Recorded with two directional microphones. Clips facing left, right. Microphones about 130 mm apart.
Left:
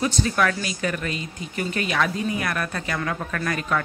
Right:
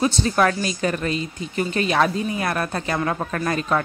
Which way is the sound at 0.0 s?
30° right (ahead or behind).